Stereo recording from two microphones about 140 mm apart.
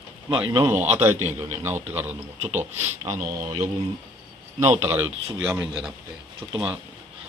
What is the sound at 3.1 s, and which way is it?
Speech, 70° right (ahead or behind).